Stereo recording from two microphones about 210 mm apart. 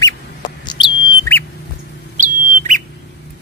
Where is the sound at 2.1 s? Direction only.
40° right (ahead or behind).